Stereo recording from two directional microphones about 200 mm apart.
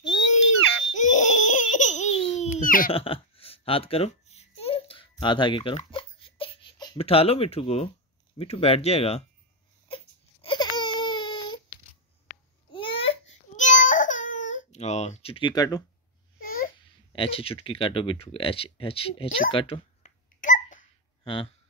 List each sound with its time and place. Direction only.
0.9 s baby laughter: 35° left (ahead or behind)
2.9 s babbling: 30° left (ahead or behind)
8.4 s speech: 30° left (ahead or behind)
9.8 s baby cry: 25° left (ahead or behind)
12.7 s baby cry: 25° left (ahead or behind)
16.3 s babbling: 45° left (ahead or behind)
17.1 s speech: 25° left (ahead or behind)
20.3 s hiccup: 40° left (ahead or behind)
21.2 s a sound: 25° left (ahead or behind)